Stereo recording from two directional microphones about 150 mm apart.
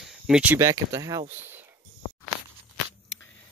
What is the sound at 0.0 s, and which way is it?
Speech, 5° right (ahead or behind).